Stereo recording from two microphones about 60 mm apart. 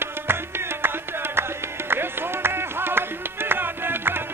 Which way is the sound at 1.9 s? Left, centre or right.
Right.